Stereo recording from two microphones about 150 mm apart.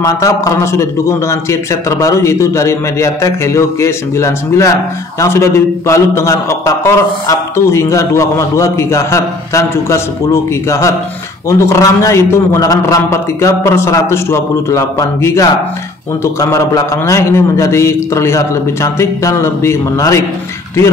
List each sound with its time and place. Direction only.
0.0 s a man's voice: 20° left (ahead or behind)